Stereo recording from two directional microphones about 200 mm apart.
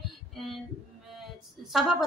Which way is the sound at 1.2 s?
Centre (ahead or behind).